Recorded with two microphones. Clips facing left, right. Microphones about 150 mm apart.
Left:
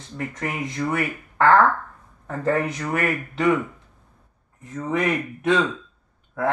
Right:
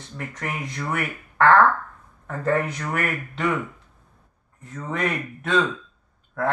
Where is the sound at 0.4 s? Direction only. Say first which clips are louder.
Left 4 dB; 20° left (ahead or behind).